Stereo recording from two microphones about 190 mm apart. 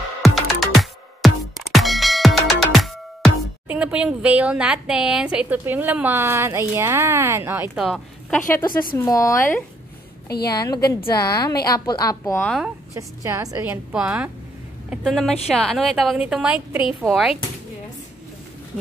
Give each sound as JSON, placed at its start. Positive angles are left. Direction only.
{"t": 0.2, "sound": "music", "side_deg": 0}
{"t": 3.6, "sound": "speech", "side_deg": -5}
{"t": 8.9, "sound": "speech", "side_deg": 15}
{"t": 10.2, "sound": "a woman's voice", "side_deg": 55}
{"t": 10.5, "sound": "a woman's voice", "side_deg": 20}
{"t": 12.4, "sound": "a woman's voice", "side_deg": 0}
{"t": 12.9, "sound": "a woman's voice", "side_deg": -15}